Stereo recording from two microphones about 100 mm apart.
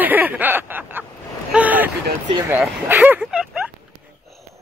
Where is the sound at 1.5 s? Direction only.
15° right (ahead or behind).